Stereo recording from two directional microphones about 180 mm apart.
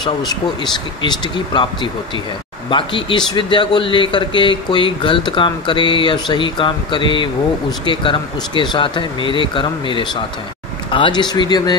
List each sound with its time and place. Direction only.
1.0 s a man's voice: 25° left (ahead or behind)